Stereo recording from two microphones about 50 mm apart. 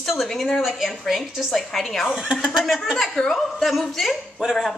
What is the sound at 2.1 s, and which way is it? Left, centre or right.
Speech, centre.